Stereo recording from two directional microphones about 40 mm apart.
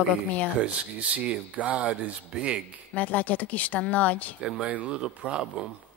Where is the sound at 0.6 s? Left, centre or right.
Right.